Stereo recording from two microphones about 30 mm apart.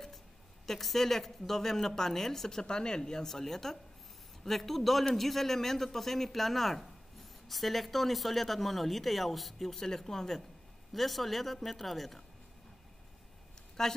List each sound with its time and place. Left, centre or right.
0.7 s a woman's voice: centre
2.6 s a woman's voice: left
10.9 s speech: centre
13.8 s a woman's voice: centre